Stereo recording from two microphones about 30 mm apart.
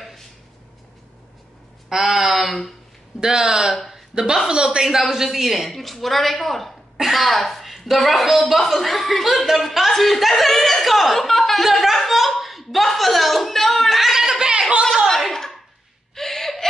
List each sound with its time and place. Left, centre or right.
1.9 s speech: centre
3.2 s speech: right
4.8 s speech: centre
5.7 s speech: centre
13.8 s chuckle: centre
14.1 s a sound: centre
15.0 s a sound: centre
16.2 s gasp: centre